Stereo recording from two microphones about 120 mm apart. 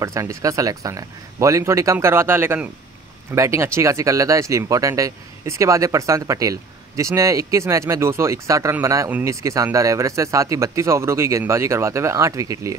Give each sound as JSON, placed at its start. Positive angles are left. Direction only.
{"t": 0.0, "sound": "speech", "side_deg": -25}